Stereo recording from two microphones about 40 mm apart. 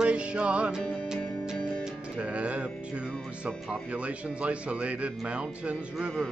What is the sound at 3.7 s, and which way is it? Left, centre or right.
Speech, right.